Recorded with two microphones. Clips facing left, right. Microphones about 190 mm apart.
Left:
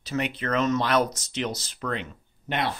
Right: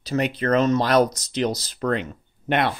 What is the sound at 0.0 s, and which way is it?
Speech, 40° right (ahead or behind).